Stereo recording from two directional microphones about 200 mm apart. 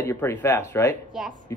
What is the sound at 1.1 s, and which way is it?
Speech, centre (ahead or behind).